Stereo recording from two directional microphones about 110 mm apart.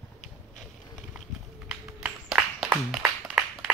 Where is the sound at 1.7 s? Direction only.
10° right (ahead or behind).